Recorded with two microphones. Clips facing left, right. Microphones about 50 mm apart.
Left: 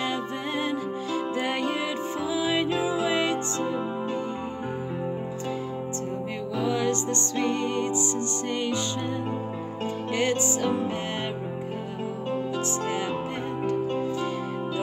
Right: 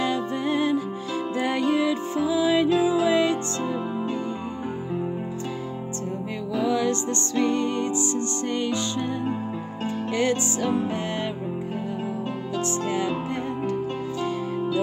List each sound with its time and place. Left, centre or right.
0.0 s music: centre
6.6 s music: centre
10.3 s music: centre
12.8 s music: left